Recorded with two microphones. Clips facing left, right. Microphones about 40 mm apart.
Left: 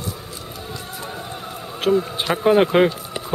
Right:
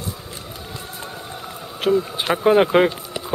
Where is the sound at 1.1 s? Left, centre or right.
Centre.